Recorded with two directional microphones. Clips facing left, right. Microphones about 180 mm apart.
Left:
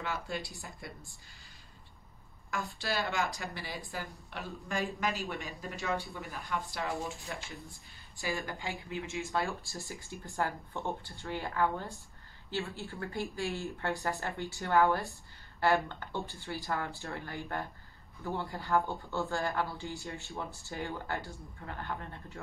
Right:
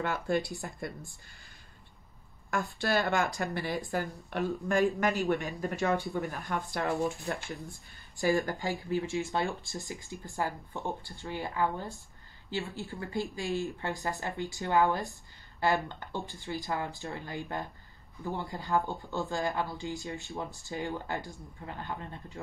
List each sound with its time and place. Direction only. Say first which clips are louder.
0.0 s speech: right 7 dB; 55° right (ahead or behind)
2.5 s speech: right 6 dB; 55° right (ahead or behind); by 9.2 s 35° right (ahead or behind)
9.3 s speech: right 2 dB; 25° right (ahead or behind)